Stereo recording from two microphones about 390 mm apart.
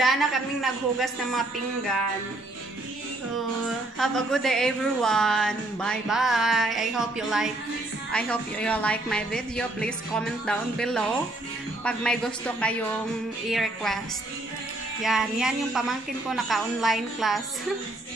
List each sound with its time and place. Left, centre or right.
0.0 s speech: centre
3.6 s speech: centre
15.0 s speech: centre